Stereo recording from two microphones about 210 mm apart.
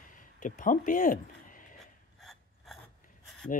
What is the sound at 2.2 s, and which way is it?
Gears, centre (ahead or behind).